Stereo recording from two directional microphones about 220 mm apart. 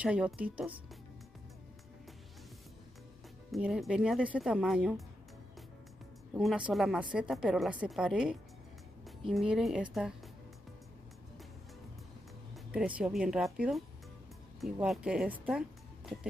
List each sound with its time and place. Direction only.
0.0 s speech: 5° right (ahead or behind)
3.5 s speech: centre (ahead or behind)
6.3 s speech: 5° right (ahead or behind)
12.7 s speech: 5° right (ahead or behind)